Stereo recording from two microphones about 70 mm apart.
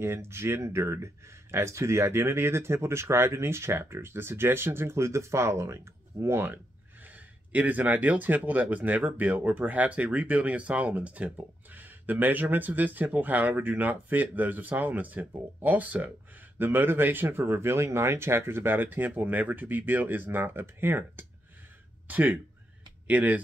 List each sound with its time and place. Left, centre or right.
0.0 s speech: right